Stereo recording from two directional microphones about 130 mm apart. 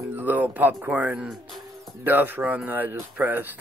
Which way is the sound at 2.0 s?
15° right (ahead or behind).